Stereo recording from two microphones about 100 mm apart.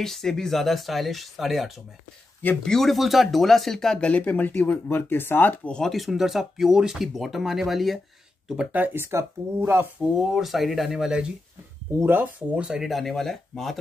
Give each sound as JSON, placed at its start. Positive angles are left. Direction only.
{"t": 0.0, "sound": "speech", "side_deg": 5}
{"t": 5.7, "sound": "speech", "side_deg": 5}
{"t": 8.5, "sound": "speech", "side_deg": -15}
{"t": 10.3, "sound": "speech", "side_deg": 0}
{"t": 12.0, "sound": "speech", "side_deg": -20}